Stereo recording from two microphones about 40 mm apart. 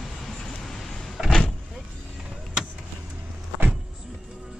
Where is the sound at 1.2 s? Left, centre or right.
Centre.